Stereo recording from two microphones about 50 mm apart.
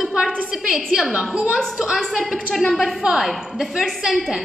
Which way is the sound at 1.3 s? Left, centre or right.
Centre.